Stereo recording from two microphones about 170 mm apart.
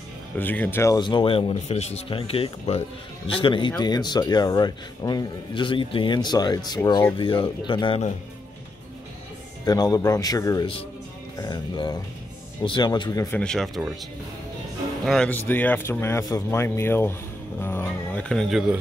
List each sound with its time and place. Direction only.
0.4 s a man's voice: 10° left (ahead or behind)
7.2 s a man's voice: 30° left (ahead or behind)
9.7 s a man's voice: 20° left (ahead or behind)
13.4 s speech: 5° left (ahead or behind)
15.0 s a man's voice: 5° left (ahead or behind)